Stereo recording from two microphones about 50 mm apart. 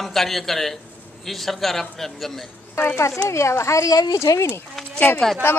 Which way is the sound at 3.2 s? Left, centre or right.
Left.